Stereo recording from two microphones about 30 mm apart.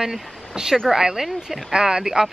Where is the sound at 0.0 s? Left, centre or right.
Centre.